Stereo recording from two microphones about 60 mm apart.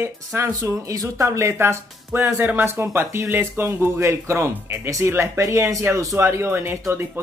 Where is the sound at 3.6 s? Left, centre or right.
Right.